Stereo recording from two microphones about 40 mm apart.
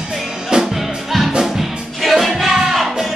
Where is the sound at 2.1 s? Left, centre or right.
Centre.